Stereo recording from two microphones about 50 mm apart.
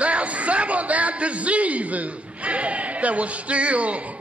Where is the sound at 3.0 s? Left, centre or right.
Right.